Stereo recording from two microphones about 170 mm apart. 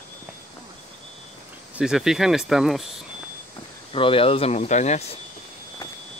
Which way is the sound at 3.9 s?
30° left (ahead or behind).